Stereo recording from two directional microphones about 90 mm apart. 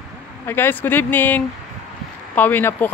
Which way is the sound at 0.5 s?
25° left (ahead or behind).